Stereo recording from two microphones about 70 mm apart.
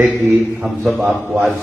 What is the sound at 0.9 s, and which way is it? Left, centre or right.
Speech, right.